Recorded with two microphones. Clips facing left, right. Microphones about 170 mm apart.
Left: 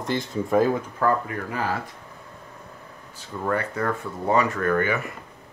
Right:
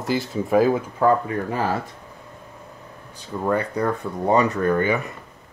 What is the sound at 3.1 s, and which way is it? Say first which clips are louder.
Speech: right 4 dB; 20° right (ahead or behind).